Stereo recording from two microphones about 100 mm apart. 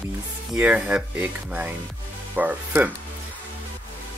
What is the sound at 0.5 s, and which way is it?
Speech, 15° right (ahead or behind).